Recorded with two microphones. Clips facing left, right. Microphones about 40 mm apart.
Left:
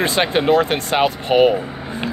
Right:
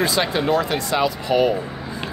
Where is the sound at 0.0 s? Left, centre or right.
Left.